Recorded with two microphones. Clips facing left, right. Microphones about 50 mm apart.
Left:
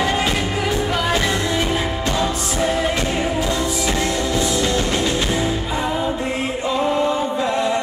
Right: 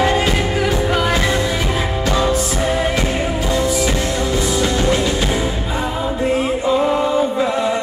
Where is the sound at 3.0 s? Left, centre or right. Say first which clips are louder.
Right 1 dB; right.